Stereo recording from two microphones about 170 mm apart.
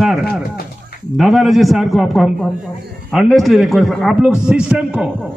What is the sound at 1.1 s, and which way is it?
A man's voice, centre (ahead or behind).